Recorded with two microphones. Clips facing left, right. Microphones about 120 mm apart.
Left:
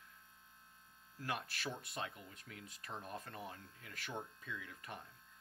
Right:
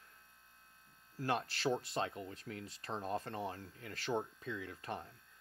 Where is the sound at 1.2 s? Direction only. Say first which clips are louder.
Right 7 dB; 30° right (ahead or behind).